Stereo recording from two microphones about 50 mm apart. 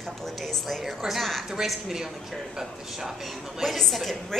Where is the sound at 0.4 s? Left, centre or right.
Centre.